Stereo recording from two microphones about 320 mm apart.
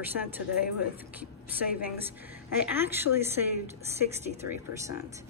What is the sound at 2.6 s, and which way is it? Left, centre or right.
Speech, centre.